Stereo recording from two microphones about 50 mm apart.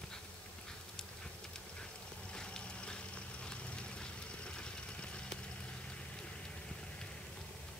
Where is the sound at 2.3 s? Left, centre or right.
Centre.